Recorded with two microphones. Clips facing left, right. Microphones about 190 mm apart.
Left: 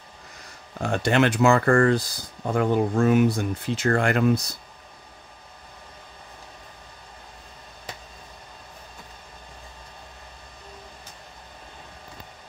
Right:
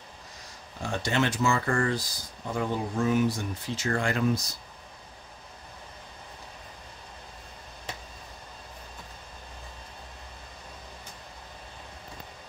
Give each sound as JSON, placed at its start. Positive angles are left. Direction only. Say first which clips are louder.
{"t": 0.7, "sound": "speech", "louder": "left 6 dB", "side_deg": 60}